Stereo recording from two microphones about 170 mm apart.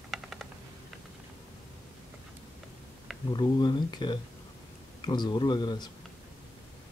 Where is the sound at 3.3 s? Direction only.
25° left (ahead or behind).